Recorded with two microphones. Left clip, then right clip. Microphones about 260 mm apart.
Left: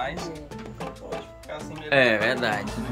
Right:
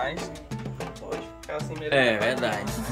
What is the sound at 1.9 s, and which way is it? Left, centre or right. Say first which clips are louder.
Speech: left 2 dB; centre.